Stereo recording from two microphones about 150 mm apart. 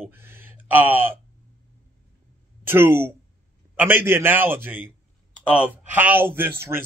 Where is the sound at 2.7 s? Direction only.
15° right (ahead or behind).